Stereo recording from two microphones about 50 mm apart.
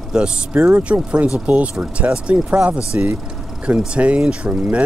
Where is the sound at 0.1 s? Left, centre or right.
Centre; by 3.1 s right.